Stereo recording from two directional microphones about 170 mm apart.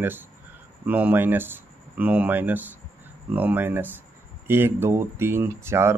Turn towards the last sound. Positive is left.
turn(degrees=-15)  # may be behind; listen again after turning